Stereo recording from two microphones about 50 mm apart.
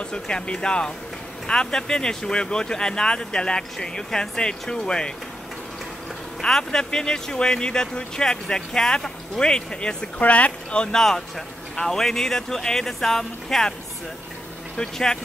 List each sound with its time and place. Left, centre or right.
0.0 s speech: centre
6.4 s speech: centre
11.0 s speech: centre
14.8 s speech: centre